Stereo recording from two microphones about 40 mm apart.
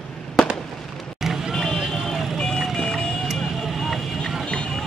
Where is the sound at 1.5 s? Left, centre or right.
Centre.